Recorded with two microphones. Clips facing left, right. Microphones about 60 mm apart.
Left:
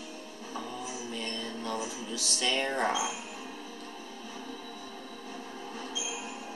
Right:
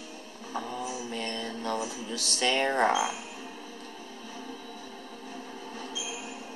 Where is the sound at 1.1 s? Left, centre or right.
Right.